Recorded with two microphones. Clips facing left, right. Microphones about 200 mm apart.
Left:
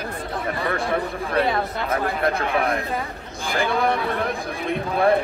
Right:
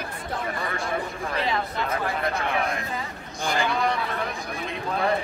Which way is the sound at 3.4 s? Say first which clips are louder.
Left 3 dB; 55° left (ahead or behind).